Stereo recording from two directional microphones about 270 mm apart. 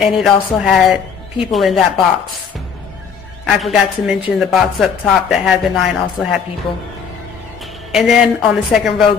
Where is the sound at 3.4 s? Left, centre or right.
Centre.